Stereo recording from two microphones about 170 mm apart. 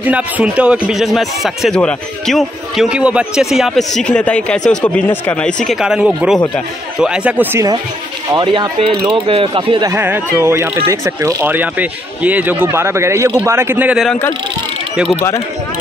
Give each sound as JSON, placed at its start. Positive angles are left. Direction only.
{"t": 0.0, "sound": "speech", "side_deg": -10}
{"t": 5.7, "sound": "speech", "side_deg": -5}
{"t": 8.3, "sound": "speech", "side_deg": -25}
{"t": 9.8, "sound": "speech", "side_deg": -10}